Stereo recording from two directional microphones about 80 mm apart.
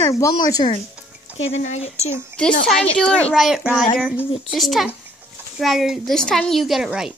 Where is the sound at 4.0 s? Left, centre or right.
Centre.